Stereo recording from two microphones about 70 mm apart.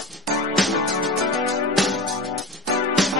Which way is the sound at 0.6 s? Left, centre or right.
Centre.